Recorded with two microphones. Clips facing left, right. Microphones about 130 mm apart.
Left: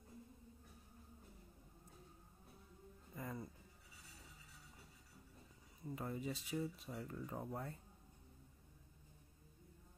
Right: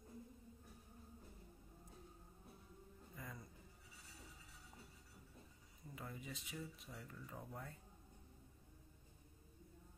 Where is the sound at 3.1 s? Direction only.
35° left (ahead or behind).